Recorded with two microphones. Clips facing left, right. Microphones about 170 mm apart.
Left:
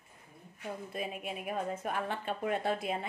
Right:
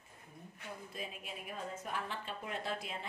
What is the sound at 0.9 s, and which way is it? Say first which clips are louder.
A woman's voice: left 9 dB; 60° left (ahead or behind).